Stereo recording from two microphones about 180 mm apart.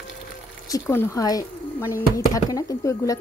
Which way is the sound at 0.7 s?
15° left (ahead or behind).